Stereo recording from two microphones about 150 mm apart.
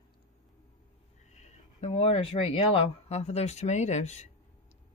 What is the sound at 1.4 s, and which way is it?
Speech, 45° left (ahead or behind).